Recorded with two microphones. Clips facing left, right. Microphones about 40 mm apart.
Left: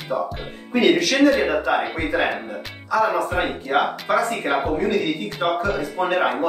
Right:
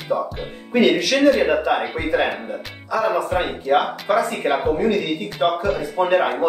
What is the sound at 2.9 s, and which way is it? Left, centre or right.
Speech, centre.